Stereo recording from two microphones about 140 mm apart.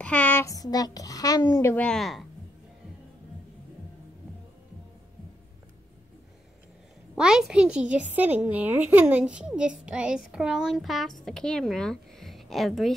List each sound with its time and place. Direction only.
0.0 s a child's voice: 10° left (ahead or behind)
1.8 s a child's voice: 5° left (ahead or behind)
7.2 s a child's voice: 5° right (ahead or behind)